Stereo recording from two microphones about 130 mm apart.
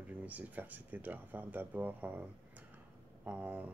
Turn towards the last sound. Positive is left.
turn(degrees=-10)  # may be behind; listen again after turning